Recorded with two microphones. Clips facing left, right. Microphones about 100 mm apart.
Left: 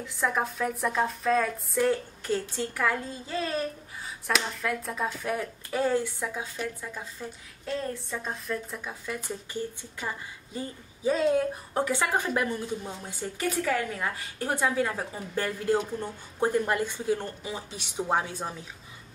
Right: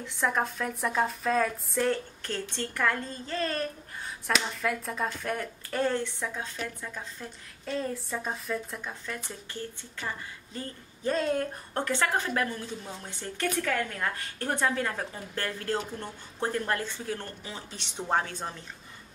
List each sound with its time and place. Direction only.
0.0 s speech: centre (ahead or behind)